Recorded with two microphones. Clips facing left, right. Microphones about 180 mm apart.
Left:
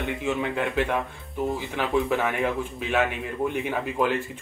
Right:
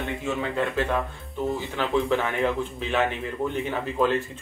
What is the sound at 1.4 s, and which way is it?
Speech, centre (ahead or behind).